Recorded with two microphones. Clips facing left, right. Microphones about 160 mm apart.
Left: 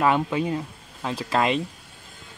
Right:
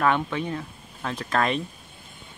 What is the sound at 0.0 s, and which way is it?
Speech, 10° left (ahead or behind).